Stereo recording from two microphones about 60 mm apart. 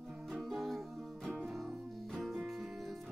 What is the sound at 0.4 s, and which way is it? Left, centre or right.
Music, centre.